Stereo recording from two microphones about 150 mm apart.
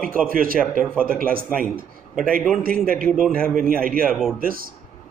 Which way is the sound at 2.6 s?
75° right (ahead or behind).